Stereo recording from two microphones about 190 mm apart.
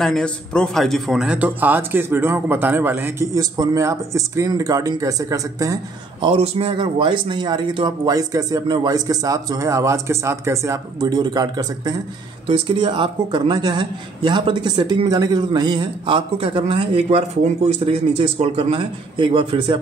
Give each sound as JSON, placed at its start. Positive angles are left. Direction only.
{"t": 0.0, "sound": "a man's voice", "side_deg": 5}
{"t": 6.2, "sound": "a man's voice", "side_deg": -30}